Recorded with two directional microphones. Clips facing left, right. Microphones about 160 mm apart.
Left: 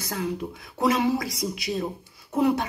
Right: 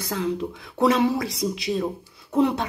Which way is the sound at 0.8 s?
30° right (ahead or behind).